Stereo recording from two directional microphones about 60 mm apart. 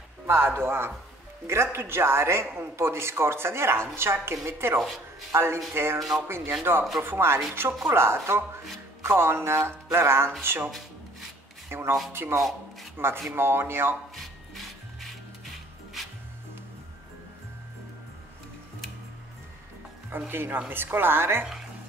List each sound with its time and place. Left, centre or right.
0.3 s speech: right
5.9 s speech: centre
6.2 s a woman's voice: right
11.7 s a woman's voice: right
14.1 s music: centre
20.1 s a woman's voice: right